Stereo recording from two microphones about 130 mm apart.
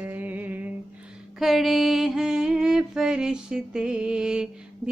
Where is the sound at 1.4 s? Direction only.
Centre (ahead or behind).